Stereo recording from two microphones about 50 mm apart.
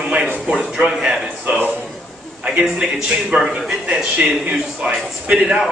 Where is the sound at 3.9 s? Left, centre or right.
Right.